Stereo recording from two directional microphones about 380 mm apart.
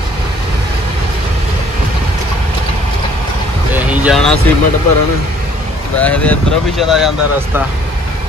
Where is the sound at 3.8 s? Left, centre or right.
Centre.